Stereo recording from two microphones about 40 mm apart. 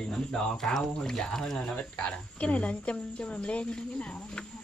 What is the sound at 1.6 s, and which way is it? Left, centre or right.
Speech, left.